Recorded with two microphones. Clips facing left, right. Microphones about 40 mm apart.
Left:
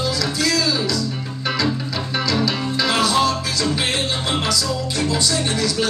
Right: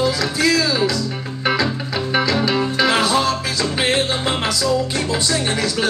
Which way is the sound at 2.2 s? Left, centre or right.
Right.